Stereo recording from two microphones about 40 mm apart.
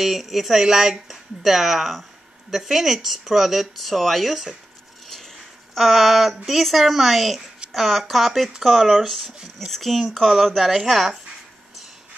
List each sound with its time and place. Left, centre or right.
0.0 s speech: centre
5.0 s a sound: centre
5.8 s speech: centre